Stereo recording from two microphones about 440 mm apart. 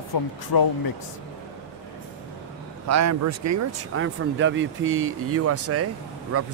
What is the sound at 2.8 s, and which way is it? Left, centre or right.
Speech, right.